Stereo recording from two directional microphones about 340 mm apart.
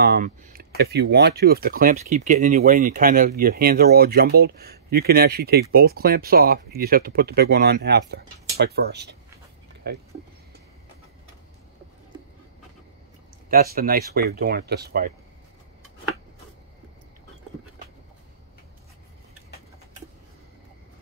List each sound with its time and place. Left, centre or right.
0.0 s speech: right
13.5 s speech: right